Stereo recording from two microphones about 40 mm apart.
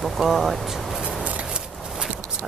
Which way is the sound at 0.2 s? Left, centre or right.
Centre.